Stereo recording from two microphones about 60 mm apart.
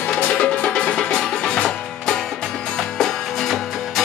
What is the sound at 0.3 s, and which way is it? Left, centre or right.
Music, centre.